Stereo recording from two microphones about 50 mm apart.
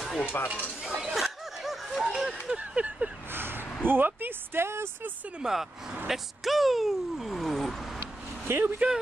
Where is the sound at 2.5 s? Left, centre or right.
Right.